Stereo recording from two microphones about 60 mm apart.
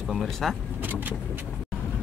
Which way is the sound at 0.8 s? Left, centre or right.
Right.